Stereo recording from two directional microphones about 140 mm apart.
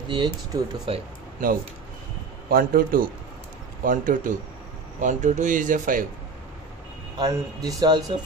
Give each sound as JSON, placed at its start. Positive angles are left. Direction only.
{"t": 0.1, "sound": "speech", "side_deg": -35}
{"t": 2.5, "sound": "a man's voice", "side_deg": -90}
{"t": 3.8, "sound": "speech", "side_deg": -70}
{"t": 7.2, "sound": "speech", "side_deg": -25}